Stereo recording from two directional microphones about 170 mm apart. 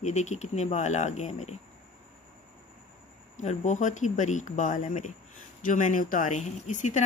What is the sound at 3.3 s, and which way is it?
Speech, 45° left (ahead or behind).